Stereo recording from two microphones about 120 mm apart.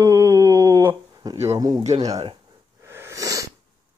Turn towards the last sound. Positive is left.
turn(degrees=-30)  # may be behind; listen again after turning